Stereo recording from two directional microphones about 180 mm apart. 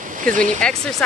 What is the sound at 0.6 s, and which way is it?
Speech, 5° left (ahead or behind).